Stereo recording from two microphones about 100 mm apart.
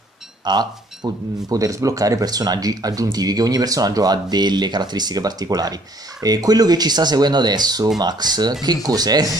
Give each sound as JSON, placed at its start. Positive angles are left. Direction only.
{"t": 0.5, "sound": "speech", "side_deg": -45}